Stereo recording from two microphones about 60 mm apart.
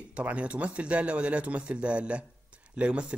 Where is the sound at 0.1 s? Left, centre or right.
Right.